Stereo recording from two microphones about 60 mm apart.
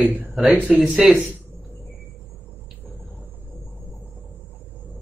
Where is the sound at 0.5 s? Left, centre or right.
Right.